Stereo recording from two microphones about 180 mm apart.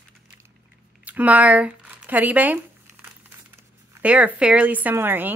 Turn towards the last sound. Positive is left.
turn(degrees=-10)  # may be behind; listen again after turning